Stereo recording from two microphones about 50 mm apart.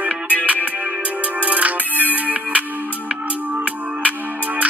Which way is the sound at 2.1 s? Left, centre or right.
Right.